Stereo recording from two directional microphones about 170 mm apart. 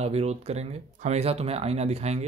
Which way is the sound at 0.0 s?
40° right (ahead or behind).